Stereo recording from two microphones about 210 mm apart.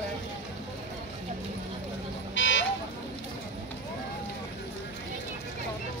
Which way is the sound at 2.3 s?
60° left (ahead or behind).